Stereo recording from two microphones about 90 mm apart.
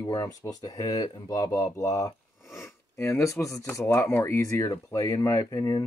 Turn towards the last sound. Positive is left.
turn(degrees=45)  # may be behind; listen again after turning